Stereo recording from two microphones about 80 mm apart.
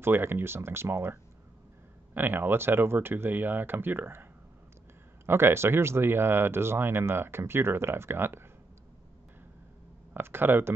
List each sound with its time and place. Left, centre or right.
0.0 s speech: right
2.1 s speech: right
10.1 s speech: right